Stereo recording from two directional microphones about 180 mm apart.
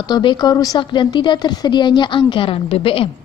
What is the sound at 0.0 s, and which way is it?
Speech, 25° left (ahead or behind).